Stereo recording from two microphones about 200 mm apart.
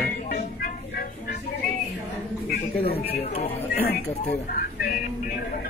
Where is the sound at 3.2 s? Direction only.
30° left (ahead or behind).